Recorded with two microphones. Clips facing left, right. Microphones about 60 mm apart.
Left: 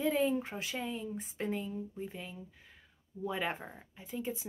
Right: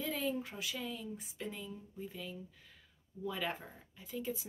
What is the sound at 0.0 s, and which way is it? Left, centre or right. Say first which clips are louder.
Speech: left 7 dB; left.